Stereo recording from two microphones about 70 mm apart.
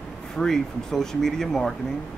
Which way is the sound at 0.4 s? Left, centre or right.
Centre.